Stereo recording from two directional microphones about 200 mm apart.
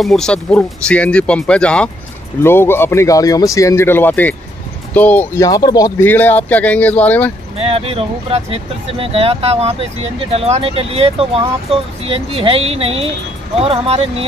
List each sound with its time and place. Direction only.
0.0 s speech: centre (ahead or behind)
7.5 s speech: 30° right (ahead or behind)